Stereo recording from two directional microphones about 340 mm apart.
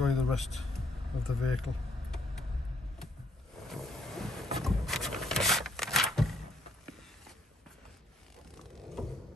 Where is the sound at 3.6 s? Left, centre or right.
Centre.